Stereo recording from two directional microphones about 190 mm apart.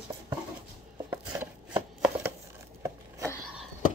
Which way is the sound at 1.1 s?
10° right (ahead or behind).